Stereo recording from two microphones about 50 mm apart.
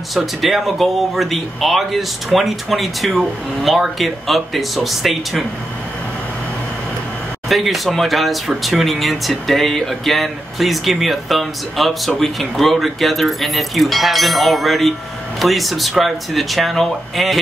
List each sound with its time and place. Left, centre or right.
0.1 s speech: centre
7.4 s speech: centre